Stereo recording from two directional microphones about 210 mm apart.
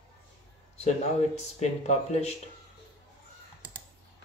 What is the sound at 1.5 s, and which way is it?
Speech, 30° left (ahead or behind).